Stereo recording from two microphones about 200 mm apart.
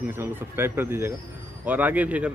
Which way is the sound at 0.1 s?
10° right (ahead or behind).